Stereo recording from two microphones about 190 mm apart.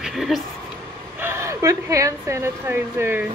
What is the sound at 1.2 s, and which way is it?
Speech, 15° right (ahead or behind).